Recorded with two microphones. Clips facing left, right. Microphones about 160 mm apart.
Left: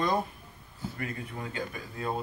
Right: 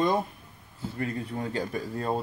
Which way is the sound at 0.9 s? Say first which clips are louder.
Right 7 dB; 35° right (ahead or behind).